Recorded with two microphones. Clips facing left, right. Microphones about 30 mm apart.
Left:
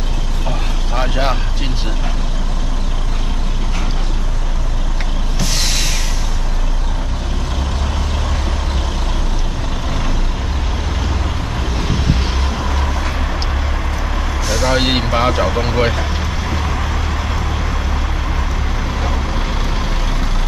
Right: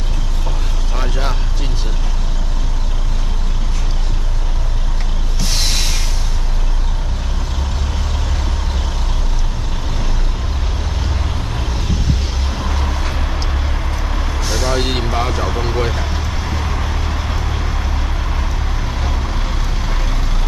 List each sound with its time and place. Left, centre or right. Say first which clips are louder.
0.5 s vehicle: left 5 dB; centre
11.7 s vehicle: left 4 dB; centre
14.5 s speech: left 4 dB; left
15.9 s vehicle: left 2 dB; centre
19.0 s vehicle: left 3 dB; centre